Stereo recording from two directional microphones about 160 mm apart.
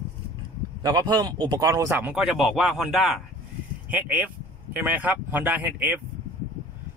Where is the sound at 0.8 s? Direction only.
25° right (ahead or behind).